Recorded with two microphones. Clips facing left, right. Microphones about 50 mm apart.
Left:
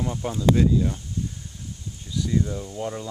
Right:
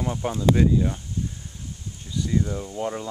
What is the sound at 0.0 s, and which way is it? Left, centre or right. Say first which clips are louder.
Speech: even; centre.